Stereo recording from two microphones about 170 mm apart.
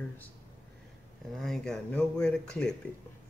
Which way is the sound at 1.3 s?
Centre (ahead or behind).